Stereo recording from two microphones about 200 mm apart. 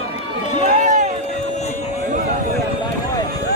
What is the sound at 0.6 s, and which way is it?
Run, 40° right (ahead or behind).